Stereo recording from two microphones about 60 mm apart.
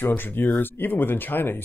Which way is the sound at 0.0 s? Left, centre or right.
Left.